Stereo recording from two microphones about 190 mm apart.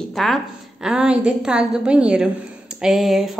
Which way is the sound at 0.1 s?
Centre (ahead or behind).